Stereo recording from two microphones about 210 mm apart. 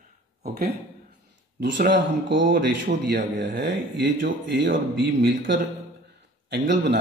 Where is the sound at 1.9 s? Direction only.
55° right (ahead or behind).